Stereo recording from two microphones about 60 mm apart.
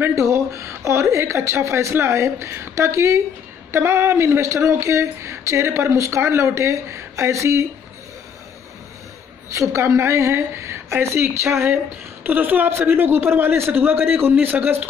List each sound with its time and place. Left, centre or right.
0.1 s speech: right
9.5 s speech: right
11.7 s a woman's voice: right